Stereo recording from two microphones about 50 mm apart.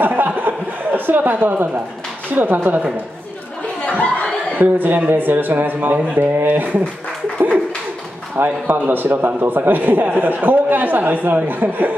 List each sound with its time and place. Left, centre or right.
0.0 s chuckle: right
2.3 s a man's voice: right
3.8 s laughter: left
4.6 s a man's voice: right
7.3 s bird: right
8.4 s a man's voice: right